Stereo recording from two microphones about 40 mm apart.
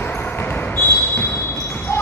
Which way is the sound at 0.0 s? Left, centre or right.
Left.